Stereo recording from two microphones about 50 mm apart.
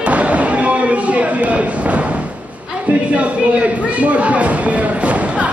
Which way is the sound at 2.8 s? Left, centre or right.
Right.